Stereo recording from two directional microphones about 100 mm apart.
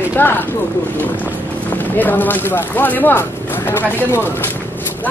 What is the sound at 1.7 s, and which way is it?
Speech, 20° left (ahead or behind).